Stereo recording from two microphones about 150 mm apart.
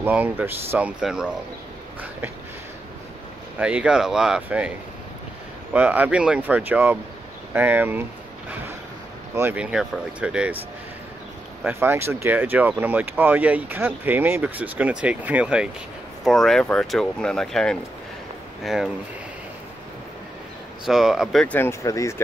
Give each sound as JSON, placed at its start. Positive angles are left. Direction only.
{"t": 0.0, "sound": "speech", "side_deg": -10}
{"t": 3.5, "sound": "speech", "side_deg": -10}
{"t": 9.3, "sound": "speech", "side_deg": -15}
{"t": 11.6, "sound": "speech", "side_deg": -15}
{"t": 20.8, "sound": "speech", "side_deg": 0}
{"t": 21.5, "sound": "speech", "side_deg": 20}